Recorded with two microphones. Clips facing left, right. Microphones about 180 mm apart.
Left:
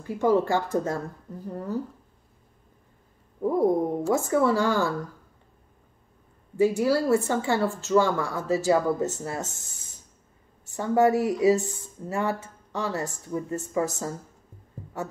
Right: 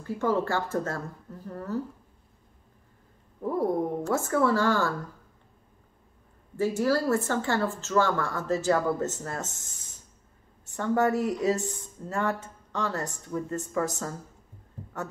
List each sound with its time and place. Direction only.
0.0 s a woman's voice: 15° left (ahead or behind)
3.4 s a woman's voice: 15° left (ahead or behind)
6.5 s a woman's voice: 15° left (ahead or behind)
10.6 s a woman's voice: 10° left (ahead or behind)